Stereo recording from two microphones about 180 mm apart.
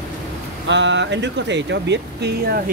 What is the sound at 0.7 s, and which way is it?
Speech, 80° right.